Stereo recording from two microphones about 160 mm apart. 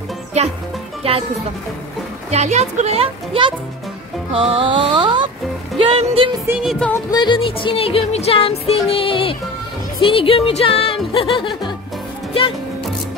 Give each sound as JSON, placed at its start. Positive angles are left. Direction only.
{"t": 0.3, "sound": "a child's voice", "side_deg": -45}
{"t": 1.0, "sound": "music", "side_deg": -35}
{"t": 2.3, "sound": "a child's voice", "side_deg": -45}
{"t": 4.3, "sound": "music", "side_deg": -35}
{"t": 6.6, "sound": "music", "side_deg": 0}
{"t": 7.1, "sound": "music", "side_deg": 25}